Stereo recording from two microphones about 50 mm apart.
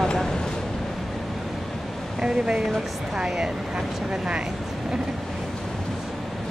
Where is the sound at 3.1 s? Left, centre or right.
Centre.